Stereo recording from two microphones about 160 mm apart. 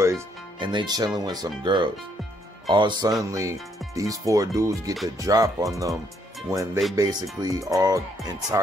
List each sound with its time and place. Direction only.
0.6 s speech: 30° right (ahead or behind)